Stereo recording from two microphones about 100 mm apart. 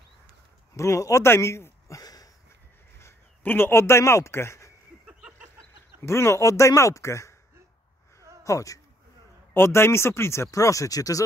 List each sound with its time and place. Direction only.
0.7 s speech: 30° left (ahead or behind)
3.0 s a man's voice: 25° left (ahead or behind)
5.0 s a sound: 10° right (ahead or behind)
5.9 s speech: 30° left (ahead or behind)
8.5 s speech: 35° left (ahead or behind)